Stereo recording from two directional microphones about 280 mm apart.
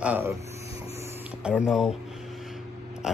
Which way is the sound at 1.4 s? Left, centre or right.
Centre.